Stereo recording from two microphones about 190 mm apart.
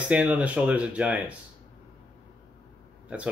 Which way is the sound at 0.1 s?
5° right (ahead or behind).